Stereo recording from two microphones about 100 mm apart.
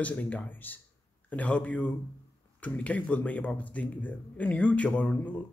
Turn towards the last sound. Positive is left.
turn(degrees=15)  # may be behind; listen again after turning